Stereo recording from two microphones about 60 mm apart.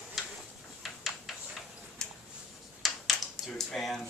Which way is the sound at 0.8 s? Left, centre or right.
Centre.